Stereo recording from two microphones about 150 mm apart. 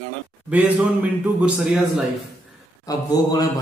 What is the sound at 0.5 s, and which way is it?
Speech, 10° right (ahead or behind).